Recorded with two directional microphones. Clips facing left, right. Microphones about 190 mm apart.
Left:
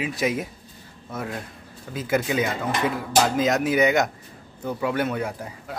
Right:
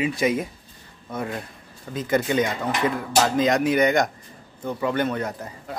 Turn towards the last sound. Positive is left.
turn(degrees=10)  # may be behind; listen again after turning